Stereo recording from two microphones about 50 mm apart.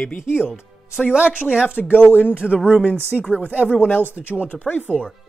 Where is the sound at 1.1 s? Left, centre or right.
Right.